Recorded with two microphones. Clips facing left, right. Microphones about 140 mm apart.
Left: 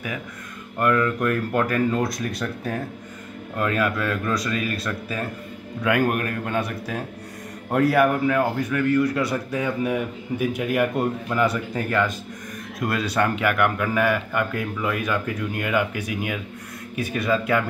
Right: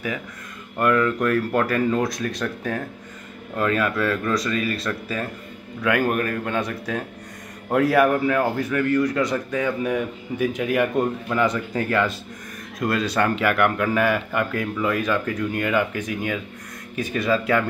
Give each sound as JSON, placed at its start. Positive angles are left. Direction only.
{"t": 0.7, "sound": "a man's voice", "side_deg": 0}